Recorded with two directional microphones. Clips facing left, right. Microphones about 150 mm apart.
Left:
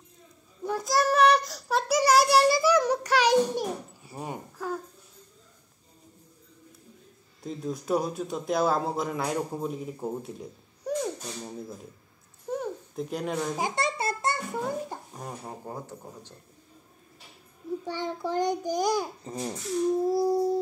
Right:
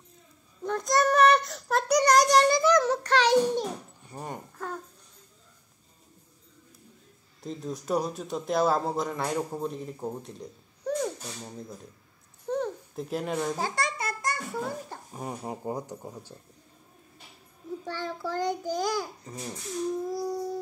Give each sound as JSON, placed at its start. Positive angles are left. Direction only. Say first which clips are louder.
{"t": 0.7, "sound": "child singing", "louder": "right 1 dB", "side_deg": 5}
{"t": 7.4, "sound": "a man's voice", "louder": "left 2 dB", "side_deg": 0}
{"t": 12.4, "sound": "a sound", "louder": "right 2 dB", "side_deg": 10}
{"t": 12.9, "sound": "a man's voice", "louder": "left 1 dB", "side_deg": 0}
{"t": 13.6, "sound": "babbling", "louder": "left 2 dB", "side_deg": 20}
{"t": 15.1, "sound": "speech", "louder": "right 3 dB", "side_deg": -10}
{"t": 17.8, "sound": "a child's voice", "louder": "left 1 dB", "side_deg": 20}
{"t": 19.2, "sound": "a sound", "louder": "left 5 dB", "side_deg": 30}
{"t": 20.1, "sound": "a child's voice", "louder": "left 7 dB", "side_deg": 25}